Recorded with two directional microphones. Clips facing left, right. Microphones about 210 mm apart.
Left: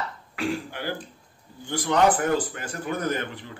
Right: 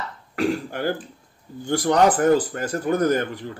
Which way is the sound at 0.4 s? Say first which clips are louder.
Right 6 dB; 45° right (ahead or behind).